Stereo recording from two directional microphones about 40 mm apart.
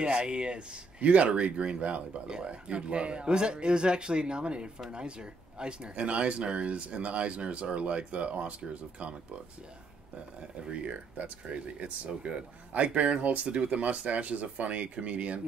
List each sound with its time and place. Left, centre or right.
0.0 s speech: right
10.6 s speech: right
10.9 s speech: right